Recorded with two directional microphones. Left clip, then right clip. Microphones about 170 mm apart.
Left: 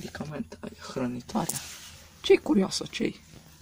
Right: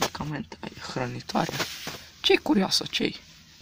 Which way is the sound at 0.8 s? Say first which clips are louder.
Right 1 dB; 35° right (ahead or behind).